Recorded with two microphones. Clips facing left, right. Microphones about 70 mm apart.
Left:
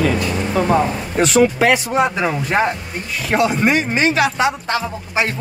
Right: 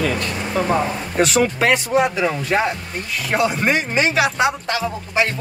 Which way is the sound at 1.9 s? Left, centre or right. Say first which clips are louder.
Even; left.